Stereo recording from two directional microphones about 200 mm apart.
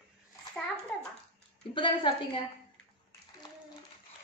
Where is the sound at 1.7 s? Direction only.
25° left (ahead or behind).